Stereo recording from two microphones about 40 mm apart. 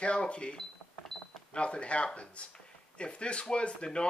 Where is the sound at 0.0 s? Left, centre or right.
Left.